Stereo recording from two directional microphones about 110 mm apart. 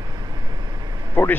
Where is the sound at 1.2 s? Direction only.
20° left (ahead or behind).